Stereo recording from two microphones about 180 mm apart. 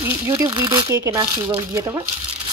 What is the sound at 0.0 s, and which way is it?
Speech, 15° right (ahead or behind).